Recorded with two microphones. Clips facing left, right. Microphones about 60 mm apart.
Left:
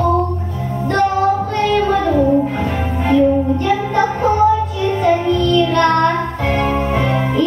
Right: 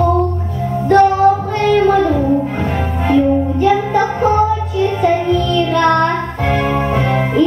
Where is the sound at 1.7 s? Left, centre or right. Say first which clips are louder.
Right 3 dB; centre.